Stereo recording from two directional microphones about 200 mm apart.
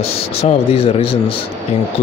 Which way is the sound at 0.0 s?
30° left (ahead or behind).